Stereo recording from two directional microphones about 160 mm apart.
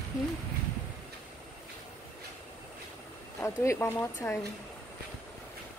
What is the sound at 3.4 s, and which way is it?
Speech, 15° left (ahead or behind).